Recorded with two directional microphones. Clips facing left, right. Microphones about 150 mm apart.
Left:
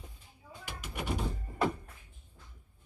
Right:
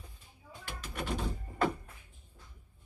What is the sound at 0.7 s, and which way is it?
Door, 10° left (ahead or behind).